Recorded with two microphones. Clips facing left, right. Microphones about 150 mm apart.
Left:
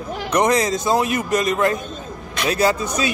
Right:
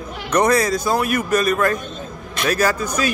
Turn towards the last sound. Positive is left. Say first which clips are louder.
# left 1 dB
turn(degrees=20)  # may be behind; listen again after turning